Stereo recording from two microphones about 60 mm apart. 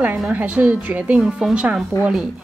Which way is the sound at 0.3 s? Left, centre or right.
Right.